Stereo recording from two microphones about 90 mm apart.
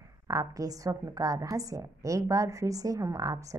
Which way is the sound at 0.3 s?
40° right (ahead or behind).